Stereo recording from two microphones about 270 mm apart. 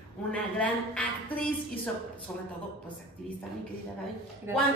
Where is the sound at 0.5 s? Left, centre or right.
Centre.